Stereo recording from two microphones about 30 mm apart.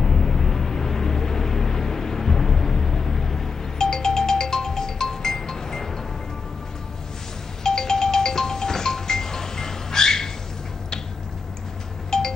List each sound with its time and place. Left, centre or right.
0.0 s vehicle: centre
7.6 s music: centre
12.1 s music: centre